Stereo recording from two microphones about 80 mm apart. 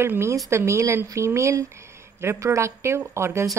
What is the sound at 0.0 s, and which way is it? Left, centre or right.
A woman's voice, right.